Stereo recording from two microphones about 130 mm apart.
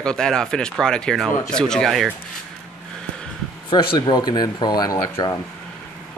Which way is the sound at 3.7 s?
35° left (ahead or behind).